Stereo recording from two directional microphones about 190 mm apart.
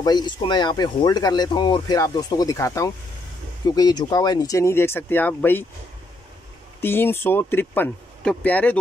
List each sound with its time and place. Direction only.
0.0 s speech: 20° left (ahead or behind)
6.8 s speech: 10° left (ahead or behind)